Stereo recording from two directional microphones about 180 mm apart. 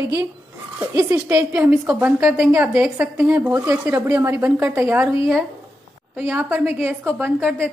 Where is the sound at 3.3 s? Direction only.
15° right (ahead or behind).